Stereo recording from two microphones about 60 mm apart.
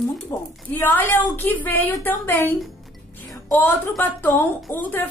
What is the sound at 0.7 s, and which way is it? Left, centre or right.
A woman's voice, left.